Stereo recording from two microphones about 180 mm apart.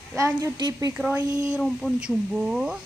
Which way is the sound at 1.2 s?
20° right (ahead or behind).